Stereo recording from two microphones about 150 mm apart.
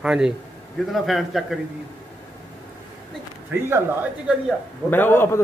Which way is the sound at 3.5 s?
15° right (ahead or behind).